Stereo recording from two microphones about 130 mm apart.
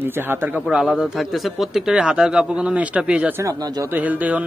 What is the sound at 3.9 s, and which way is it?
Speech, 10° right (ahead or behind).